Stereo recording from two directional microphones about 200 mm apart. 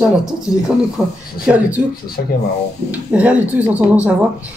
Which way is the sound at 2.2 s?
45° left (ahead or behind).